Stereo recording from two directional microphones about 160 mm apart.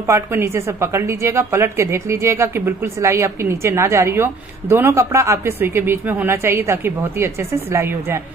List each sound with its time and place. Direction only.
0.0 s speech: 15° right (ahead or behind)